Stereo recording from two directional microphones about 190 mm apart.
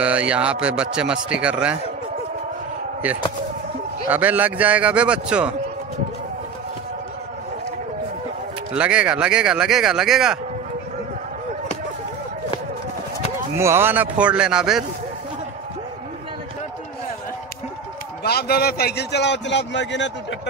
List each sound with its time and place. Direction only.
0.0 s a man's voice: 5° right (ahead or behind)
4.1 s a man's voice: 10° right (ahead or behind)
8.7 s speech: 5° right (ahead or behind)
13.6 s a man's voice: 15° right (ahead or behind)
18.2 s a man's voice: 55° left (ahead or behind)